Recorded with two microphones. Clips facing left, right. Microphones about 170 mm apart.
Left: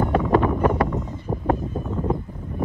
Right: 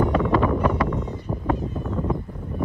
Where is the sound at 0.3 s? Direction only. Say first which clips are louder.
Left 1 dB; 40° left (ahead or behind).